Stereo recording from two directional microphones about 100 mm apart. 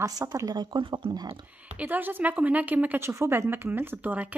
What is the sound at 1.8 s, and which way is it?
A woman's voice, 20° right (ahead or behind).